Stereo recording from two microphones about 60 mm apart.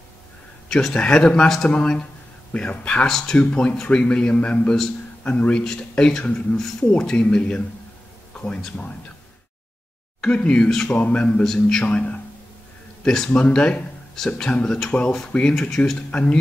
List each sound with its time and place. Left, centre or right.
0.7 s a man's voice: centre
10.2 s a man's voice: centre
11.4 s a man's voice: centre
11.8 s speech: centre
13.0 s speech: centre
13.3 s a man's voice: centre